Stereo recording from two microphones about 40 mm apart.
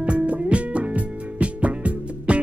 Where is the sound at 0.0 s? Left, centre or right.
Right.